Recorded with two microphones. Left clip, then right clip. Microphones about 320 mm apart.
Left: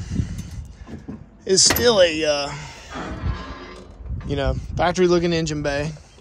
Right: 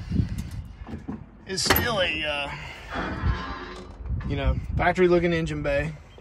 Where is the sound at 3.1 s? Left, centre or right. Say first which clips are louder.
Right 1 dB; centre.